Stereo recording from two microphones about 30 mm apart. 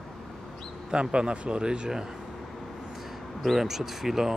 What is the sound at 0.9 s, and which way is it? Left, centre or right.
Speech, right.